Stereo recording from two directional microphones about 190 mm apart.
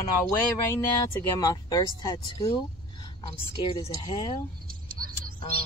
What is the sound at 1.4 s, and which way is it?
Speech, 20° left (ahead or behind).